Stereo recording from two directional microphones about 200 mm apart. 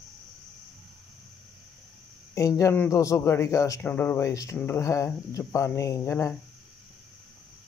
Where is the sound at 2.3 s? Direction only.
15° left (ahead or behind).